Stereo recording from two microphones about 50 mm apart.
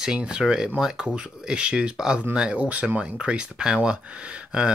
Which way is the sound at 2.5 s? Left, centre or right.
Right.